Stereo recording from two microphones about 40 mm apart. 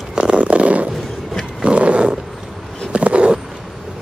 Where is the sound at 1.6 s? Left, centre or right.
Right.